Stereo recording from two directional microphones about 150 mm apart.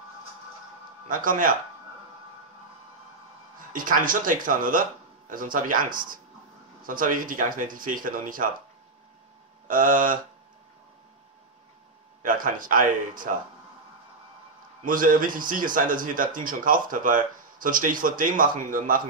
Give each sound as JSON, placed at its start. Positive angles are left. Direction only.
{"t": 1.0, "sound": "speech", "side_deg": -65}
{"t": 3.7, "sound": "speech", "side_deg": -65}
{"t": 9.7, "sound": "speech", "side_deg": -65}
{"t": 12.2, "sound": "speech", "side_deg": -65}
{"t": 14.9, "sound": "speech", "side_deg": -65}